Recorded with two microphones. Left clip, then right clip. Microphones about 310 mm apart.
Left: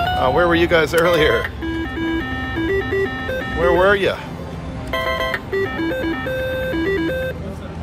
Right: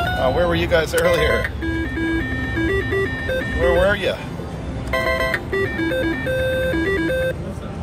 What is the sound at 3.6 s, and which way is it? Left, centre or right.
Speech, left.